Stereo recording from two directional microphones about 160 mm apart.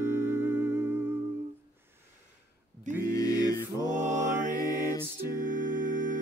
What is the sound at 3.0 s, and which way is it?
Music, 20° left (ahead or behind).